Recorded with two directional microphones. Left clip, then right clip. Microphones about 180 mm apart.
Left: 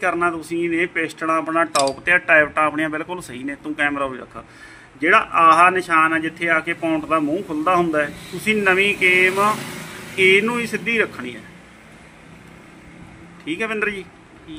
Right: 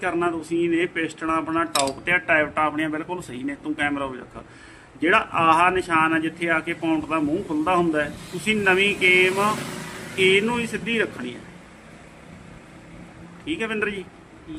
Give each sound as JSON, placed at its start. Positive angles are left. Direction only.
{"t": 0.0, "sound": "speech", "side_deg": 25}
{"t": 13.5, "sound": "speech", "side_deg": 25}